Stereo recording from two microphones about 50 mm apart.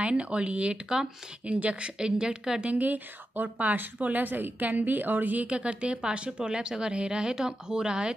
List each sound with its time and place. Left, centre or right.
0.0 s a woman's voice: right
2.6 s a woman's voice: right